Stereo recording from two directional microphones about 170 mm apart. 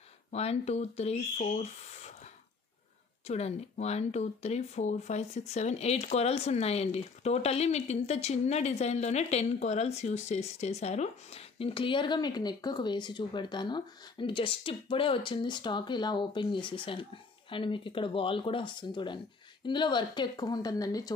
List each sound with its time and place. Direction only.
0.3 s speech: 40° left (ahead or behind)
3.3 s speech: 40° left (ahead or behind); by 21.1 s 20° left (ahead or behind)